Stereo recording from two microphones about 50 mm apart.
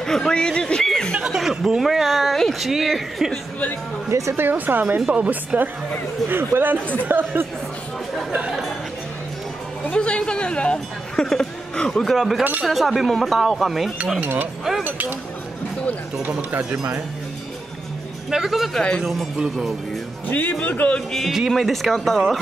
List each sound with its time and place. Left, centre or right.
0.0 s speech: centre
1.2 s speech: centre
4.1 s speech: right
4.4 s speech: right
5.0 s a woman's voice: right
6.2 s speech: right
9.8 s speech: centre
12.0 s speech: centre
14.2 s speech: right
16.3 s speech: right
18.3 s speech: centre
20.2 s speech: left
21.3 s speech: centre